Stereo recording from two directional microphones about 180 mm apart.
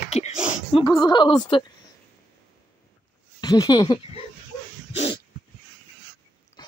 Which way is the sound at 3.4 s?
20° left (ahead or behind).